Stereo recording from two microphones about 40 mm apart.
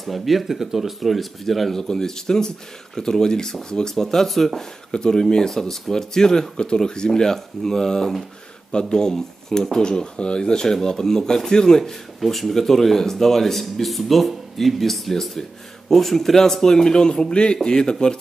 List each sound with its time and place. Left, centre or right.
0.0 s speech: centre
1.8 s speech: centre
4.9 s speech: centre
12.2 s speech: centre